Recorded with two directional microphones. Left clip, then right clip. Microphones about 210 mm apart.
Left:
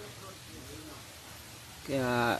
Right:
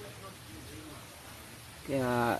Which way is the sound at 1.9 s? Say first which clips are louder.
Left 1 dB; centre (ahead or behind).